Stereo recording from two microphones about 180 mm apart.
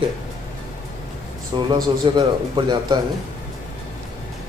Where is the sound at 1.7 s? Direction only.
25° right (ahead or behind).